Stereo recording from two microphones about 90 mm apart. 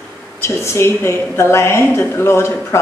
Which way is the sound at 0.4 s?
30° left (ahead or behind).